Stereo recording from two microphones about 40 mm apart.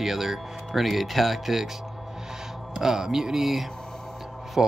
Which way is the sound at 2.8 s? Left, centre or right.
Centre.